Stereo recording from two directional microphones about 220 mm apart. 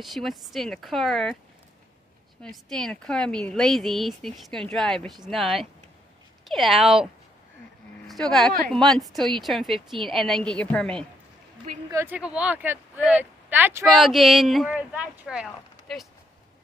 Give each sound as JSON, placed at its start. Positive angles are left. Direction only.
{"t": 0.0, "sound": "speech", "side_deg": 0}
{"t": 2.4, "sound": "speech", "side_deg": 0}
{"t": 8.1, "sound": "speech", "side_deg": 0}
{"t": 11.9, "sound": "speech", "side_deg": -10}